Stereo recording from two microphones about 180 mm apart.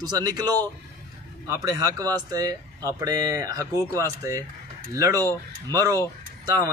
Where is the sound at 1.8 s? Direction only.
20° right (ahead or behind).